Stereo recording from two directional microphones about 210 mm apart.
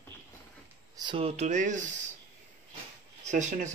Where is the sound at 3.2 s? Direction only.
35° right (ahead or behind).